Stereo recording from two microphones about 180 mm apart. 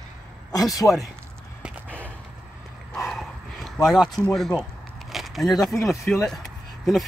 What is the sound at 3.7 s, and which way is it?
Speech, centre (ahead or behind).